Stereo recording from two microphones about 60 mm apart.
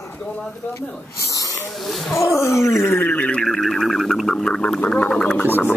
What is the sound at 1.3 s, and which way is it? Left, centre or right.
Snoring, left.